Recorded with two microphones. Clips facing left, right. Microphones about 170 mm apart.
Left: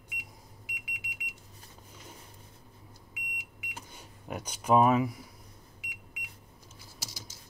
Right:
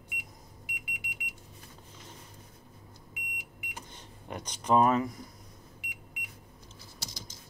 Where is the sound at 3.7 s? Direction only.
5° left (ahead or behind).